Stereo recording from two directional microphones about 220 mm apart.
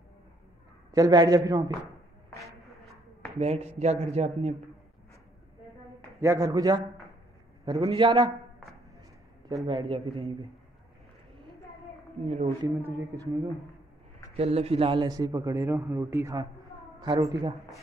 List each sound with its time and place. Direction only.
0.9 s a man's voice: 15° right (ahead or behind)
2.4 s a sound: centre (ahead or behind)
3.3 s speech: 30° right (ahead or behind)
6.2 s a man's voice: 15° right (ahead or behind)
9.7 s speech: 25° right (ahead or behind)
12.3 s speech: 30° right (ahead or behind)
12.6 s a man's voice: 15° right (ahead or behind)
14.3 s a man's voice: 25° right (ahead or behind)